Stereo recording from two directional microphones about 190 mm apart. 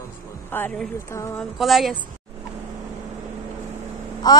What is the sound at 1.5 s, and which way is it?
Speech, centre (ahead or behind).